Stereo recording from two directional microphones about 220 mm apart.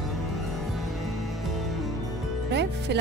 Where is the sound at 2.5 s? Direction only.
50° right (ahead or behind).